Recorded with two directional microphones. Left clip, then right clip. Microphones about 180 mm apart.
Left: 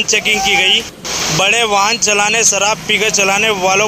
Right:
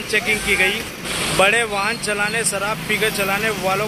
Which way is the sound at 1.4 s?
20° left (ahead or behind).